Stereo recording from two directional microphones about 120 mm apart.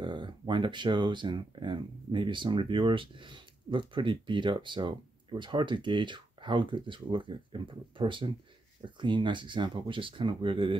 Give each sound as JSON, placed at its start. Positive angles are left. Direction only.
{"t": 0.0, "sound": "speech", "side_deg": -40}